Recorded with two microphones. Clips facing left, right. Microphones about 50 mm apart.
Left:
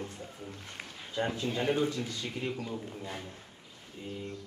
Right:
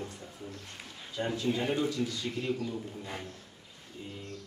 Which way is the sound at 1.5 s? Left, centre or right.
Centre.